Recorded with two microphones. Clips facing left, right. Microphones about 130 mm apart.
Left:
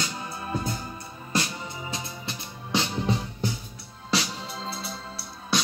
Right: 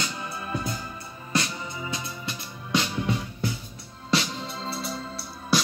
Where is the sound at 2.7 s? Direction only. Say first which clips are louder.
Even; 30° left (ahead or behind).